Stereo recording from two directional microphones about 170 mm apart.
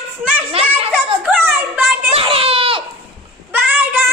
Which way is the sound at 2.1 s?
35° right (ahead or behind).